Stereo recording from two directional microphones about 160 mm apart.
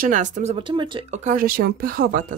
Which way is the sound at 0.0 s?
55° right (ahead or behind).